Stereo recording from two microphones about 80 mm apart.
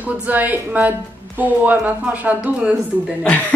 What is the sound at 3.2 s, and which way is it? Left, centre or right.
Speech, centre.